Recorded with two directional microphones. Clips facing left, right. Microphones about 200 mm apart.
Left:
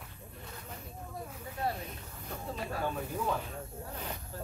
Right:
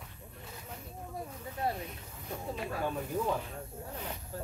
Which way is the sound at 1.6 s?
20° right (ahead or behind).